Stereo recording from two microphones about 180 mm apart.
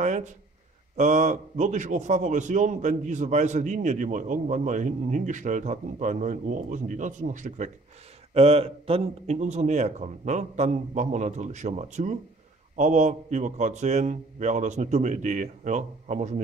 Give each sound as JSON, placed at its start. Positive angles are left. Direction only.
{"t": 0.0, "sound": "a man's voice", "side_deg": -40}